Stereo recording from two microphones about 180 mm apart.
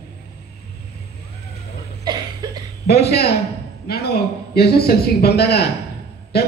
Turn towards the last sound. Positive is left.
turn(degrees=60)  # may be behind; listen again after turning